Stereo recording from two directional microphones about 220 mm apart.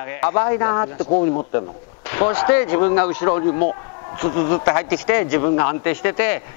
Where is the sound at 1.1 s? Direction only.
30° left (ahead or behind).